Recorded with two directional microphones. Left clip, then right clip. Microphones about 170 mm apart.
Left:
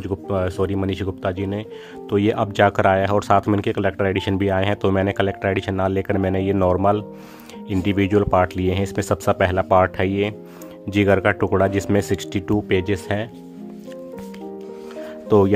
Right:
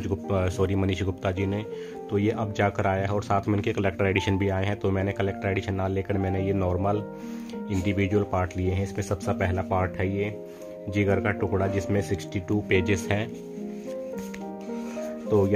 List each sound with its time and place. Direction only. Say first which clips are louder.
0.0 s speech: left 5 dB; 25° left (ahead or behind)
2.0 s speech: left 8 dB; 40° left (ahead or behind)
12.6 s speech: left 3 dB; 25° left (ahead or behind)
15.2 s speech: left 8 dB; 50° left (ahead or behind)